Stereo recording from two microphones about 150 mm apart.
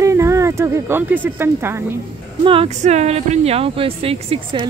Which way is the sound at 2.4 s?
35° right (ahead or behind).